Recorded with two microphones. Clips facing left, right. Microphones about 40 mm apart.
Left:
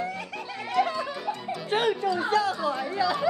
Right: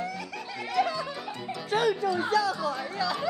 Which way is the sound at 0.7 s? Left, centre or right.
Left.